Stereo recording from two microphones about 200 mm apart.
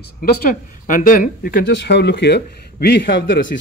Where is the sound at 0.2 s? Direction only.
45° left (ahead or behind).